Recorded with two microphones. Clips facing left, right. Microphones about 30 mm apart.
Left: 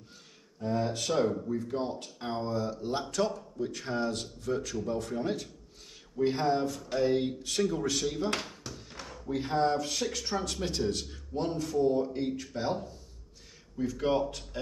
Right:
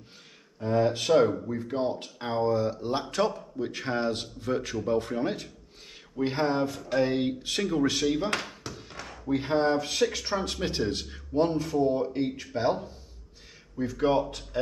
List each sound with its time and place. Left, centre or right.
0.6 s speech: right
8.5 s a sound: right
9.0 s speech: right